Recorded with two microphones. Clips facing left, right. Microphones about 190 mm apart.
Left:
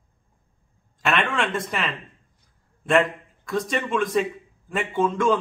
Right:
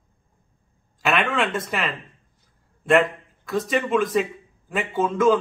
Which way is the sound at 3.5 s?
Centre (ahead or behind).